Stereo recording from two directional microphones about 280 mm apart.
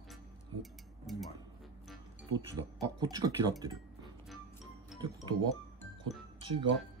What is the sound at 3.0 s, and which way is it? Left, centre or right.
Speech, centre.